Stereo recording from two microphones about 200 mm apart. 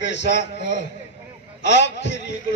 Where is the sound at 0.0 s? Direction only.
60° left (ahead or behind).